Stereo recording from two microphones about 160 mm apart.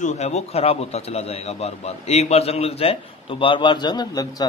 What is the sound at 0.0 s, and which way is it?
A man's voice, 45° left (ahead or behind).